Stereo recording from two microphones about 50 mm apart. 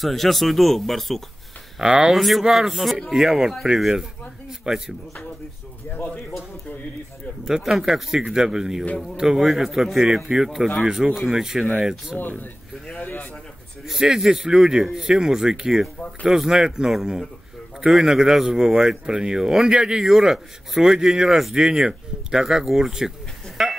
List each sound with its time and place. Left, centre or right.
0.0 s speech: centre
1.8 s a man's voice: centre
2.1 s a man's voice: centre
5.9 s speech: left
7.4 s a man's voice: centre
12.2 s speech: left
13.0 s a sound: left
14.0 s a man's voice: centre
23.6 s a sound: centre